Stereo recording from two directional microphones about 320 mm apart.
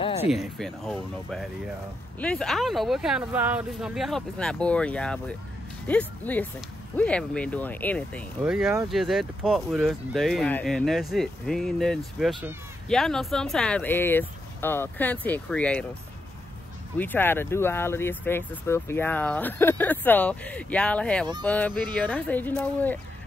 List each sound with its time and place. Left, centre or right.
0.0 s a sound: centre
0.3 s speech: centre
17.0 s speech: centre